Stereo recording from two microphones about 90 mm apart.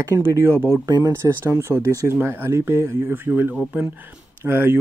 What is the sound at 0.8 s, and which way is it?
Speech, 40° right (ahead or behind).